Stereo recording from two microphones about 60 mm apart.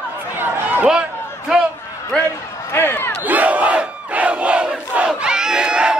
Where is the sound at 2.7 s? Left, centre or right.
Left.